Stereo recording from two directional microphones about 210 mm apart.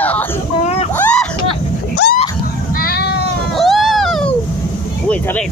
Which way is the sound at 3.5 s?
Centre (ahead or behind).